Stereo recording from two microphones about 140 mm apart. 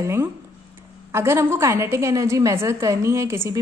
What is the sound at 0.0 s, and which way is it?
A woman's voice, 20° right (ahead or behind).